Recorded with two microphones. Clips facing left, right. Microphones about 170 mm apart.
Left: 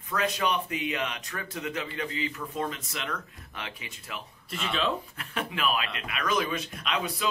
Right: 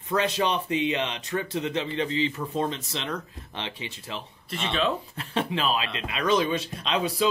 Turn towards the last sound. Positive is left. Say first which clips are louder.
# right 5 dB
turn(degrees=-30)  # may be behind; listen again after turning